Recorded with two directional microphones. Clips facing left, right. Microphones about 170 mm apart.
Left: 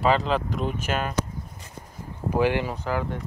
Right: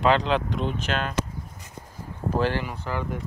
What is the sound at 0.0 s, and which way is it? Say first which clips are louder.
Speech: right 1 dB; 5° left (ahead or behind).